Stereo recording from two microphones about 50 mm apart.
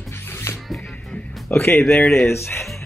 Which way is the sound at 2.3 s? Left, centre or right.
Left.